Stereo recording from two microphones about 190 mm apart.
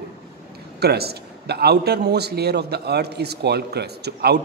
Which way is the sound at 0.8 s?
55° right (ahead or behind).